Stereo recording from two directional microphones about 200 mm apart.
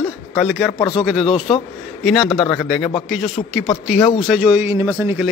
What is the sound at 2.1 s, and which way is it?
A man's voice, centre (ahead or behind).